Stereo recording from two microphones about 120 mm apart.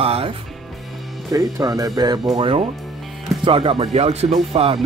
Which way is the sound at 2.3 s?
45° right (ahead or behind).